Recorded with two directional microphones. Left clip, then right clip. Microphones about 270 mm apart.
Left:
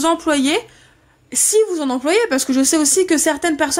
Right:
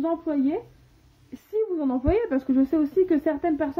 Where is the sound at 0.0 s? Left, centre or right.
Left.